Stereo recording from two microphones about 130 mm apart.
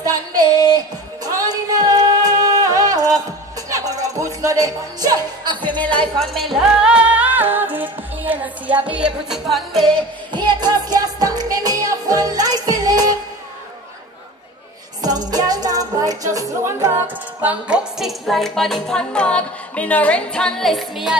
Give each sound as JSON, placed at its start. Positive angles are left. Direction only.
{"t": 0.0, "sound": "a sound", "side_deg": -30}
{"t": 1.2, "sound": "music", "side_deg": -30}
{"t": 5.6, "sound": "music", "side_deg": 10}
{"t": 10.3, "sound": "music", "side_deg": -35}
{"t": 15.0, "sound": "music", "side_deg": -30}